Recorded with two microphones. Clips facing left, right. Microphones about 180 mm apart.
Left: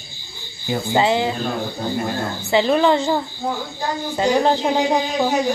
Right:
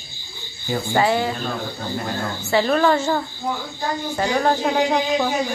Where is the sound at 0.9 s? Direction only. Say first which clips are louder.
Left 1 dB; 20° left (ahead or behind).